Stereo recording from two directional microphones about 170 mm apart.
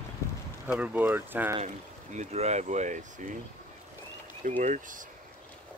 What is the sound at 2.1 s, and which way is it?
Speech, 40° right (ahead or behind).